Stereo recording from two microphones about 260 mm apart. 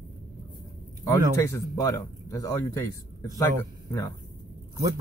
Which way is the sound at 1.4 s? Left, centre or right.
Centre.